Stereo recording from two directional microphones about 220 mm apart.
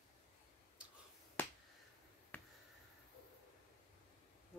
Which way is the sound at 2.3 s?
10° left (ahead or behind).